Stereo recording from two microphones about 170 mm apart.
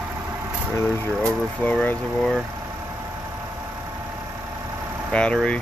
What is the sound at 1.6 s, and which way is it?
Speech, 10° left (ahead or behind).